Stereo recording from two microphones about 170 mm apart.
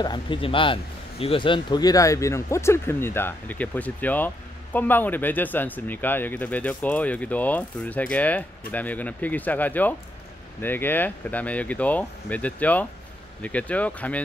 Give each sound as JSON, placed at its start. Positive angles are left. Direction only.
{"t": 0.0, "sound": "speech", "side_deg": 25}